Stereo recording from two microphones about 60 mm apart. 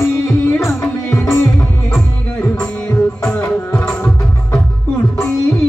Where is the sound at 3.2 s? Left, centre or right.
Left.